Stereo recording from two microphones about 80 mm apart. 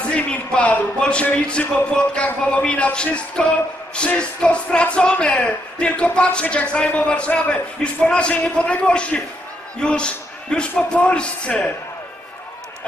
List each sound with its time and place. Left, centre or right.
0.1 s a man's voice: centre